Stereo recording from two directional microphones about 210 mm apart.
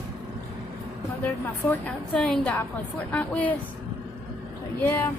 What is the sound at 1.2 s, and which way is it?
A woman's voice, 5° left (ahead or behind).